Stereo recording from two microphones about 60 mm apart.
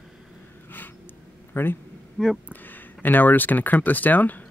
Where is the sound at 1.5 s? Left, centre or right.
Left.